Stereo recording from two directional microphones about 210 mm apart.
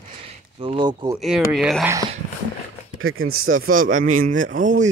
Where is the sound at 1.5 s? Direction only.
Centre (ahead or behind).